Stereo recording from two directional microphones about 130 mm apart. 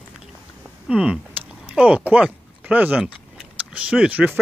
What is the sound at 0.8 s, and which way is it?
Speech, 5° right (ahead or behind).